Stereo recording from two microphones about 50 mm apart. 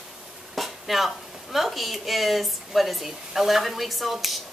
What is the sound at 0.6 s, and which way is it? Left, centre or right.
A woman's voice, centre.